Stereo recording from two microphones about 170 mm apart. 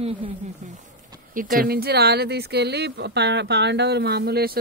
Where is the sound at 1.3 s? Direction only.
55° right (ahead or behind); by 4.5 s 70° right (ahead or behind).